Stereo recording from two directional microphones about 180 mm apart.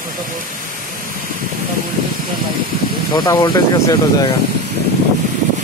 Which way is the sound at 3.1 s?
20° left (ahead or behind).